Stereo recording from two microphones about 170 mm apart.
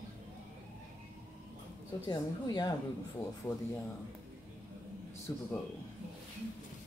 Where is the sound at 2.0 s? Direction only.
25° left (ahead or behind).